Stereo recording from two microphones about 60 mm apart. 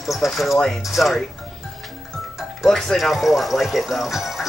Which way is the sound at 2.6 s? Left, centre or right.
Centre.